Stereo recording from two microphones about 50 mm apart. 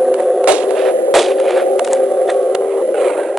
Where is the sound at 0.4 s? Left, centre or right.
Centre.